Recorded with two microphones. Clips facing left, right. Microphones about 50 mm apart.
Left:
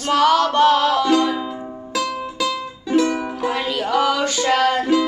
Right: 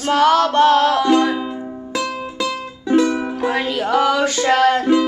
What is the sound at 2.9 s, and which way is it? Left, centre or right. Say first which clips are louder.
Music: right 2 dB; right.